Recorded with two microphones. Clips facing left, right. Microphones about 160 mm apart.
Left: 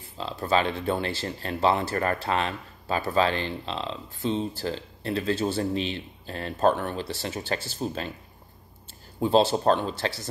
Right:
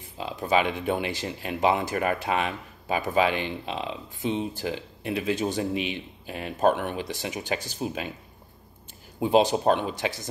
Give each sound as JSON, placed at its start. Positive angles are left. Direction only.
{"t": 0.2, "sound": "speech", "side_deg": -15}
{"t": 9.2, "sound": "speech", "side_deg": -15}